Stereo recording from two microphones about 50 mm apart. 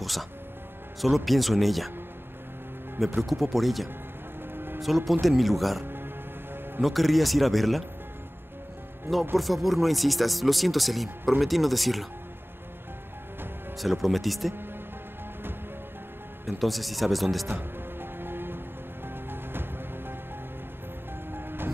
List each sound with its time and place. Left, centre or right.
0.0 s speech: centre
3.2 s speech: centre
9.4 s speech: centre
13.7 s speech: centre
16.4 s speech: centre
18.2 s music: right
21.3 s music: right